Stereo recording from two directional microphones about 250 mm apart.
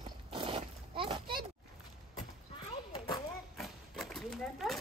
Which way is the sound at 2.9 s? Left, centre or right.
Centre.